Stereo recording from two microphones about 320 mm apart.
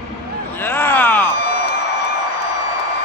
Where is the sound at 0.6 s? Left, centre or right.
Centre.